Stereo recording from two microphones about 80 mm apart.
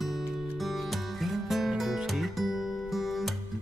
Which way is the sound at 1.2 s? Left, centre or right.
Centre.